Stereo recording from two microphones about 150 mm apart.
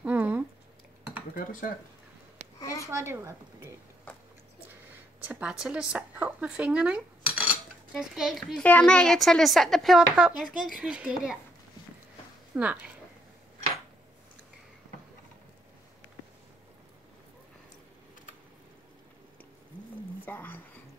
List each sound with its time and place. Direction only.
0.0 s a sound: 10° right (ahead or behind)
1.3 s speech: 60° left (ahead or behind)
2.6 s a woman's voice: 20° left (ahead or behind)
3.0 s a woman's voice: 15° right (ahead or behind)
5.2 s a woman's voice: 10° right (ahead or behind)
12.5 s a woman's voice: 10° right (ahead or behind)
20.2 s whispering: 15° left (ahead or behind)